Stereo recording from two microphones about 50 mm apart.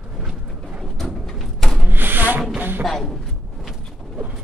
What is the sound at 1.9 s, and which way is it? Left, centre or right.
Rub, right.